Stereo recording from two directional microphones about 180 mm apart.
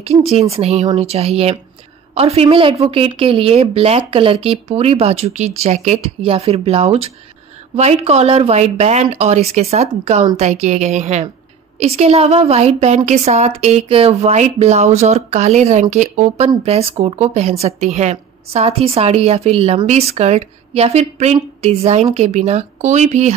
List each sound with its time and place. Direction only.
0.3 s a woman's voice: 35° right (ahead or behind)